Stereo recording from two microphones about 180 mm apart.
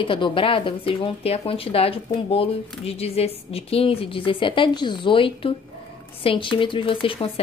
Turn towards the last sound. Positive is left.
turn(degrees=30)  # may be behind; listen again after turning